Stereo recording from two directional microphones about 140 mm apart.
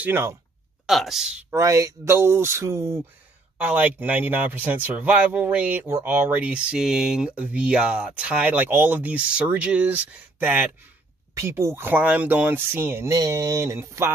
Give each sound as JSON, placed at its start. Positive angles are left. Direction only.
{"t": 0.0, "sound": "a man's voice", "side_deg": -15}
{"t": 0.8, "sound": "speech", "side_deg": 0}
{"t": 1.5, "sound": "a man's voice", "side_deg": -20}
{"t": 11.3, "sound": "a man's voice", "side_deg": -20}